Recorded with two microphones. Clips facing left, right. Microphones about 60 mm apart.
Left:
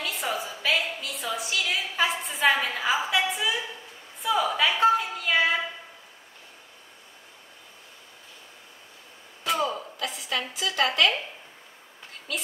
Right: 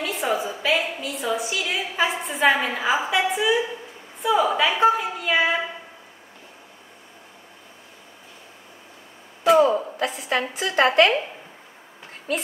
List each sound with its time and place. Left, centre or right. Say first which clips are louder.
0.0 s a sound: right 6 dB; centre
0.5 s a woman's voice: right 4 dB; centre
9.4 s a woman's voice: right 11 dB; right